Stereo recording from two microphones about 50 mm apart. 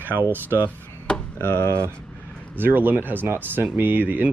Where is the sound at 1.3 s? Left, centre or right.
Left.